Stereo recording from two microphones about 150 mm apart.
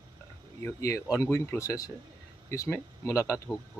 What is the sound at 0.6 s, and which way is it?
Speech, 20° left (ahead or behind).